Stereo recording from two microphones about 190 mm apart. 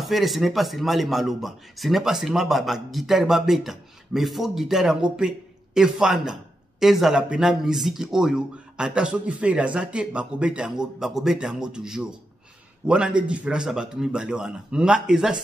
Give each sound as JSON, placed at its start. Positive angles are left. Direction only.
{"t": 0.0, "sound": "speech", "side_deg": 0}